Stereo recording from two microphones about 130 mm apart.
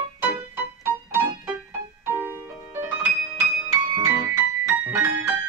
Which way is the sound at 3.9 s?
25° right (ahead or behind).